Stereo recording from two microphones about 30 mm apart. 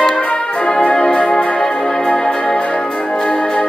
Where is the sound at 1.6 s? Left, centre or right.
Left.